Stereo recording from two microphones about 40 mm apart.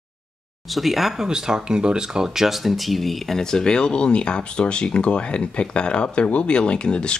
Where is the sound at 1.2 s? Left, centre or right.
Centre; by 7.2 s left.